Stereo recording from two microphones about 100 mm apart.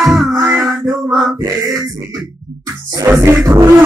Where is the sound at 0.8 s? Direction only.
35° right (ahead or behind).